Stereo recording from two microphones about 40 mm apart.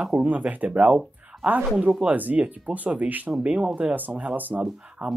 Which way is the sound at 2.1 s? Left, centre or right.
Right.